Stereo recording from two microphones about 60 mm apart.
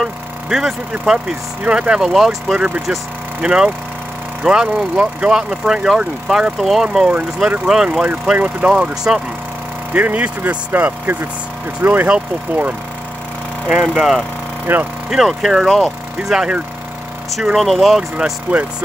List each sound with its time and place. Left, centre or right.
0.0 s speech: centre
3.4 s speech: centre
8.4 s speech: right
8.7 s speech: centre
9.9 s speech: right
14.7 s speech: right
15.0 s speech: centre
16.3 s speech: centre
17.3 s speech: centre
18.5 s speech: right